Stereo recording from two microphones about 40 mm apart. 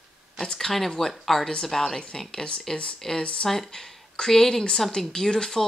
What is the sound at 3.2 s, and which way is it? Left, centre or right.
Speech, left.